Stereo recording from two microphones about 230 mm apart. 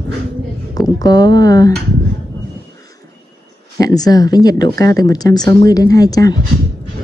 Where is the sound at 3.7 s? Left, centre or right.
Centre.